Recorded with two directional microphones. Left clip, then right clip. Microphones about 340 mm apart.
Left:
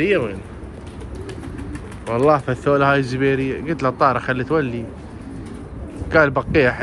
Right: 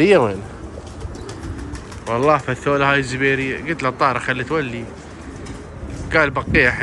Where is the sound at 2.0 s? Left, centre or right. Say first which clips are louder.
Even; centre.